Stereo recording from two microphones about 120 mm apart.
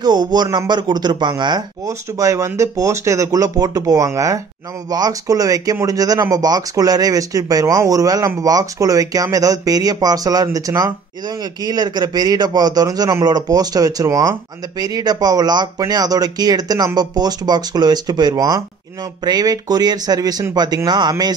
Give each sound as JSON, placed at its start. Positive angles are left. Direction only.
{"t": 0.0, "sound": "speech", "side_deg": -35}
{"t": 1.9, "sound": "speech", "side_deg": -25}